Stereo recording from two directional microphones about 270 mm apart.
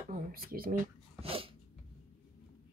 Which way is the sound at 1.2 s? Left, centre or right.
Right.